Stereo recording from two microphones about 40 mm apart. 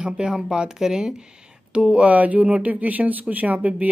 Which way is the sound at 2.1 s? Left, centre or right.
Right.